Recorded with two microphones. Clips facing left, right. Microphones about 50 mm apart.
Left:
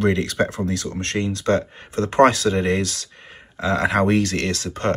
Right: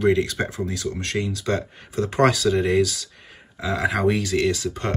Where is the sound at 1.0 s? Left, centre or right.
Left.